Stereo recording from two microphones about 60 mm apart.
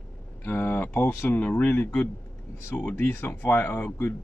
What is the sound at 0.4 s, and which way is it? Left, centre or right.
Speech, left.